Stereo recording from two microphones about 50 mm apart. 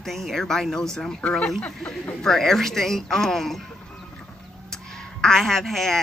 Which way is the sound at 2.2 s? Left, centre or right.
Centre.